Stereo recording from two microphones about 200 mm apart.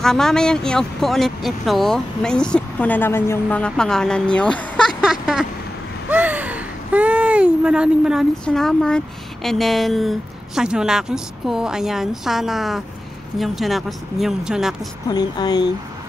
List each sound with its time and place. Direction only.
0.0 s speech: centre (ahead or behind)
15.0 s speech: 20° left (ahead or behind)